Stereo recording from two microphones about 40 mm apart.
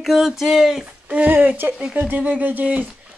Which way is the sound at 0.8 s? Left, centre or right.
Right.